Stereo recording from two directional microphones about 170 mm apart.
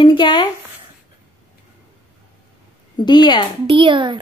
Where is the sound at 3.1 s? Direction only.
25° left (ahead or behind).